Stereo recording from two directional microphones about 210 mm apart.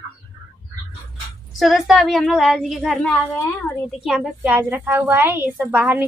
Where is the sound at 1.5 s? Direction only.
Centre (ahead or behind).